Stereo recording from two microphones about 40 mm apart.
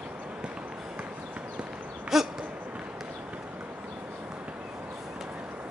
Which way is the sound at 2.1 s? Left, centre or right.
Centre.